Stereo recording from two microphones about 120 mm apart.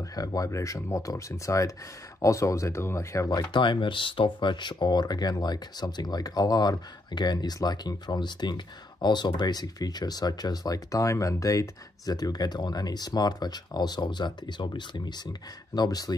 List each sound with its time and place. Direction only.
0.0 s speech: 30° left (ahead or behind)